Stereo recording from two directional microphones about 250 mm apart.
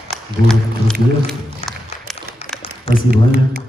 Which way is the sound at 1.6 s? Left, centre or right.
Left.